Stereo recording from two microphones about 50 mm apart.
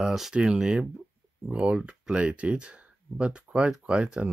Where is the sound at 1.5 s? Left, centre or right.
Right.